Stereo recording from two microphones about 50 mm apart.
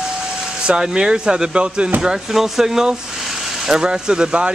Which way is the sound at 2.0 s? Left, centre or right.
Centre.